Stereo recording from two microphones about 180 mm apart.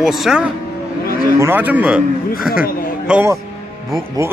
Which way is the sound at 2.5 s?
55° left (ahead or behind).